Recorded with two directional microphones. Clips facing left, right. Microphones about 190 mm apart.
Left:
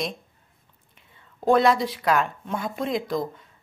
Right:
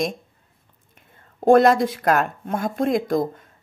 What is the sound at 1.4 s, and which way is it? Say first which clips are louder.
Speech: right 5 dB; 50° right (ahead or behind).